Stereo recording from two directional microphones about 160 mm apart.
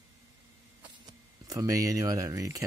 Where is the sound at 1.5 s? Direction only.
20° right (ahead or behind).